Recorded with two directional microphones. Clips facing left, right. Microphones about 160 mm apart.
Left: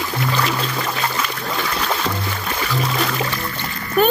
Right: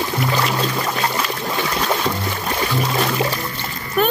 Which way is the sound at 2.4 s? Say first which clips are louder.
Right 2 dB; 35° right (ahead or behind).